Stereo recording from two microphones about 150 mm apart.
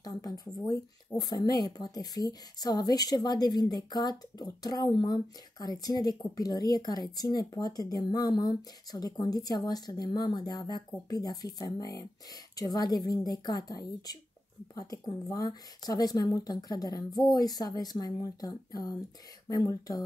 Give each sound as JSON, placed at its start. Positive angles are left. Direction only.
{"t": 0.0, "sound": "speech", "side_deg": 25}